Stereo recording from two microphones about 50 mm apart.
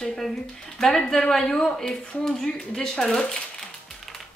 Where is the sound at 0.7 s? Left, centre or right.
Centre.